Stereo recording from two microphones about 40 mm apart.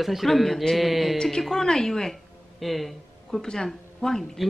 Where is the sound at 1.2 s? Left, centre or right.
Centre.